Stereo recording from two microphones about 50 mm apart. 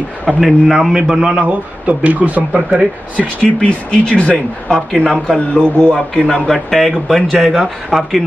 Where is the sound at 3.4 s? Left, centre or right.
Left.